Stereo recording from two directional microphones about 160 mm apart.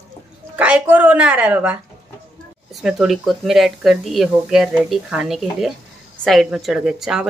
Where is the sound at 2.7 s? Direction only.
Centre (ahead or behind).